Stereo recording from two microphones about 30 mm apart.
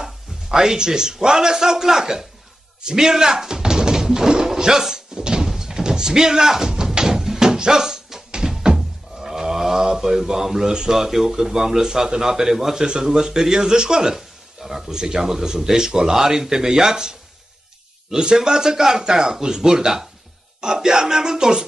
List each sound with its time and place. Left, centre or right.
0.0 s a man's voice: centre
2.8 s a sound: right
5.5 s door: centre
7.2 s music: centre
9.2 s speech: centre
12.8 s speech: right
14.1 s a sound: centre
14.9 s speech: right